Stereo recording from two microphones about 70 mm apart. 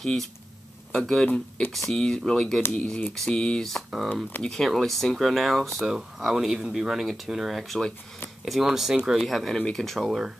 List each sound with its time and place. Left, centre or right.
0.0 s speech: centre